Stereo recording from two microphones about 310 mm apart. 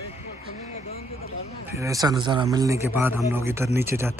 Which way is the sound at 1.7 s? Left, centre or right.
Centre.